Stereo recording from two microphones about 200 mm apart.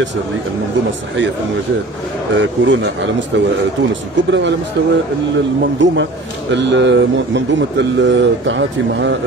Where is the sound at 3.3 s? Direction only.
65° right (ahead or behind).